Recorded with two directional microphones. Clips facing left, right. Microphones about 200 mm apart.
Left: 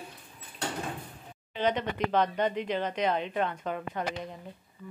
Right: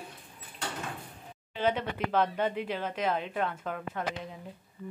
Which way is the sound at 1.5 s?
10° right (ahead or behind).